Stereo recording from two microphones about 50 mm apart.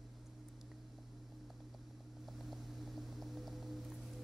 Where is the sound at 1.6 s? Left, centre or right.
Centre.